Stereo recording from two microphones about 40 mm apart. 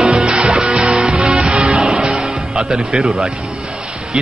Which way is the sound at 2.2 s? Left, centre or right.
Centre.